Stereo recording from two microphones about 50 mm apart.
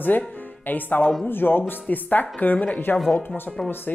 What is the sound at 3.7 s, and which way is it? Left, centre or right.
Speech, left.